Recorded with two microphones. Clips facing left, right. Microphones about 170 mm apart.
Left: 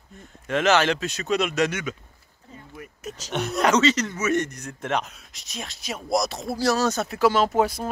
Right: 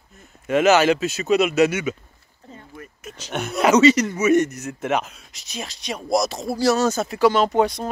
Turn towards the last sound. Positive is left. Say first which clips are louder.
# right 2 dB
turn(degrees=5)  # may be behind; listen again after turning